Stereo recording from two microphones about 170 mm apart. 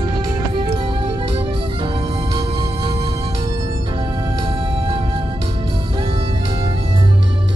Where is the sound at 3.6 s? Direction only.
20° right (ahead or behind).